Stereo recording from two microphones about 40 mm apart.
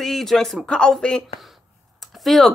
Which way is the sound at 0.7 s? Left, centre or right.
Left.